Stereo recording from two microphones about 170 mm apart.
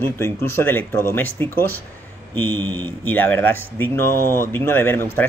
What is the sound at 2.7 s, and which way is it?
Speech, 10° left (ahead or behind).